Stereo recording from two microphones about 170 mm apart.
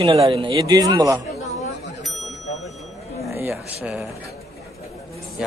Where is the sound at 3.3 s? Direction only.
15° right (ahead or behind).